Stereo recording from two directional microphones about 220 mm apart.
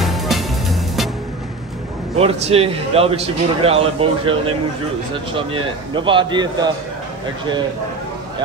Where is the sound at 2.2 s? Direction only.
25° right (ahead or behind).